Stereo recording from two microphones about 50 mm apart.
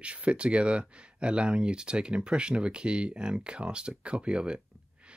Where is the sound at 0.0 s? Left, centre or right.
Right.